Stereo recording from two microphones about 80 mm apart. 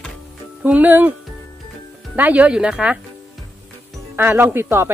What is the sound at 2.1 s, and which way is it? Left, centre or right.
Speech, centre.